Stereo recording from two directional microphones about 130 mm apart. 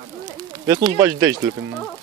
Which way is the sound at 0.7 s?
25° right (ahead or behind).